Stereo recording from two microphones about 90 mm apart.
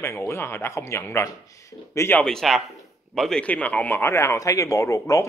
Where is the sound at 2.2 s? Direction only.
5° left (ahead or behind).